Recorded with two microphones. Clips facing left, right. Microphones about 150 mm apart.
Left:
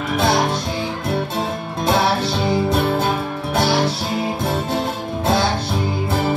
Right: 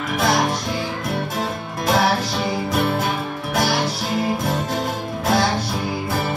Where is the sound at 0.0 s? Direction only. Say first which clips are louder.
Left 2 dB; 25° left (ahead or behind).